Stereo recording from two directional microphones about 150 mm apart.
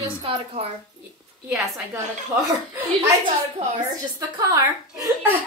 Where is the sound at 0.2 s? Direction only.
40° right (ahead or behind).